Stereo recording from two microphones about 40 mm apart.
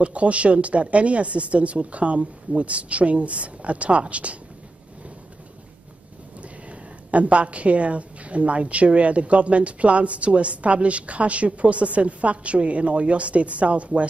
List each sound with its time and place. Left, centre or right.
0.0 s a woman's voice: right
6.7 s a woman's voice: right